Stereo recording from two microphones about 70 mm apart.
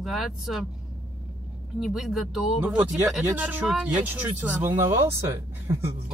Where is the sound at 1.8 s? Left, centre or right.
Centre.